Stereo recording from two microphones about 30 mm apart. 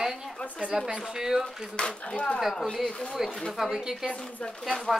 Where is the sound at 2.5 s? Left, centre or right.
Centre.